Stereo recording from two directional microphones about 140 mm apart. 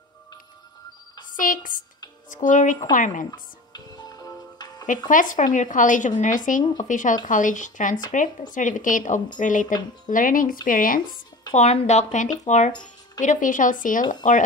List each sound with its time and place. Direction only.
1.3 s a woman's voice: 75° left (ahead or behind)
2.2 s speech: 65° left (ahead or behind)
3.3 s music: 30° left (ahead or behind)
5.1 s speech: 65° left (ahead or behind)
11.5 s speech: 55° left (ahead or behind)